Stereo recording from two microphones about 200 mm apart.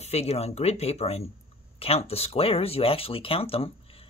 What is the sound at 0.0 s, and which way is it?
Speech, 30° left (ahead or behind).